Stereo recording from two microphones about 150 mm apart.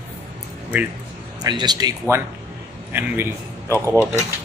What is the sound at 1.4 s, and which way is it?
Speech, 30° right (ahead or behind).